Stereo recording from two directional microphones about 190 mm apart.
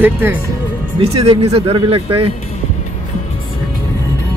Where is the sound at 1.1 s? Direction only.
30° right (ahead or behind).